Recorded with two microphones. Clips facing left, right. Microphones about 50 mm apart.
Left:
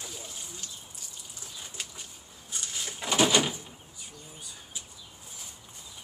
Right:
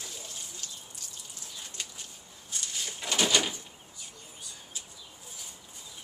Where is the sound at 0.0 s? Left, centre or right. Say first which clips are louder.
Left 1 dB; centre.